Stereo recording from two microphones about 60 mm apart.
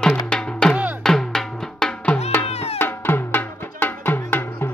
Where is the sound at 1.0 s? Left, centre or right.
Centre.